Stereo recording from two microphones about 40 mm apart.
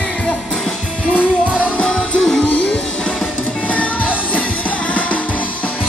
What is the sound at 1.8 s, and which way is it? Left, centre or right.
Music, left.